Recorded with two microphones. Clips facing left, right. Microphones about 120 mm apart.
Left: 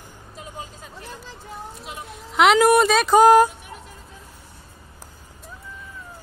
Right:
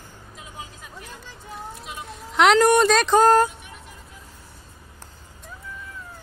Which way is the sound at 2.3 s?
5° left (ahead or behind).